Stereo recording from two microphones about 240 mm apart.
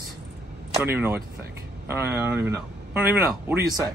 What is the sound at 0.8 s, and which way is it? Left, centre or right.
Speech, centre.